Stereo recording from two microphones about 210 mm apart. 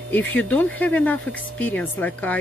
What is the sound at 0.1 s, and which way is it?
Speech, 5° left (ahead or behind).